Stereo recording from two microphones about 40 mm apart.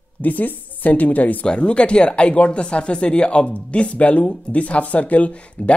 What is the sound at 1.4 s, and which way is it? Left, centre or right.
Speech, left.